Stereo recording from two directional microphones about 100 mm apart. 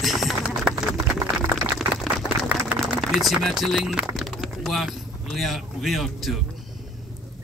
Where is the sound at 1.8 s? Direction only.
5° right (ahead or behind).